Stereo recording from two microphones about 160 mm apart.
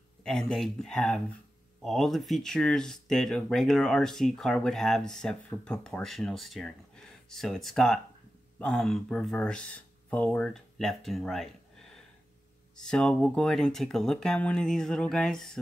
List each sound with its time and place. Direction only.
0.2 s speech: 5° left (ahead or behind)
12.7 s speech: 5° left (ahead or behind)